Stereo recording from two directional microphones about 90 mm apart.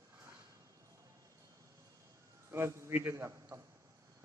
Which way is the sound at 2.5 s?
30° right (ahead or behind).